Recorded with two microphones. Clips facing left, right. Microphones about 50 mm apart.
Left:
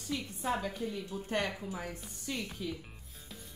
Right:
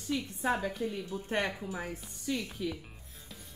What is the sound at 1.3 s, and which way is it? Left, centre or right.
Speech, right.